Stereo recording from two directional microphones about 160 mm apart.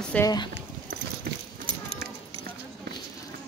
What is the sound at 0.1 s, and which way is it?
Speech, 10° left (ahead or behind).